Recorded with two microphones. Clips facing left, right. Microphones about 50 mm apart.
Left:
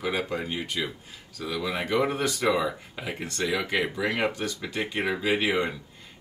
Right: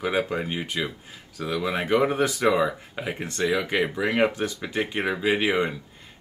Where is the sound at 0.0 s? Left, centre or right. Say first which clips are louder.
Right 3 dB; centre.